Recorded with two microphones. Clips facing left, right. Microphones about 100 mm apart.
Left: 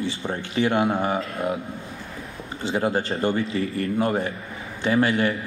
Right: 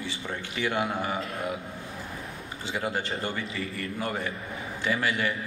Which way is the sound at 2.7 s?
30° left (ahead or behind).